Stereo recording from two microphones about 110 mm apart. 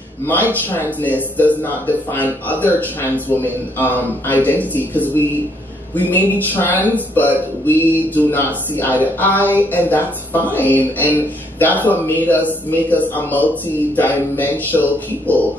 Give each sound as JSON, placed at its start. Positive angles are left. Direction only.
{"t": 0.3, "sound": "speech", "side_deg": 15}